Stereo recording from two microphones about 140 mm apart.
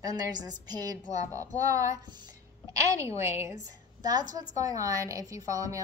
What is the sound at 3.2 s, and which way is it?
A woman's voice, 20° right (ahead or behind).